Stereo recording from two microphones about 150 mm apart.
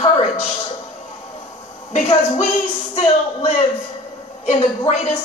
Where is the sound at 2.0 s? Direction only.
45° left (ahead or behind).